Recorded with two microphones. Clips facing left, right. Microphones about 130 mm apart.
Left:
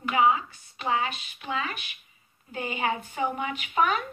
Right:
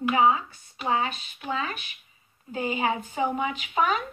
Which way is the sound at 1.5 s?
30° right (ahead or behind).